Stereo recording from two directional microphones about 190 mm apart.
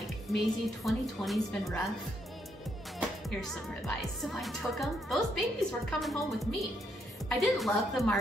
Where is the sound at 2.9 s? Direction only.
Centre (ahead or behind).